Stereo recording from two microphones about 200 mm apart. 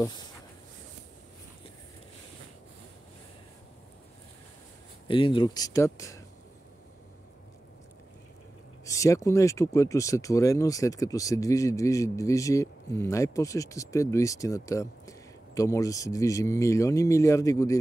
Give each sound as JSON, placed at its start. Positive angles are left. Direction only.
{"t": 5.0, "sound": "speech", "side_deg": 25}
{"t": 8.8, "sound": "speech", "side_deg": 15}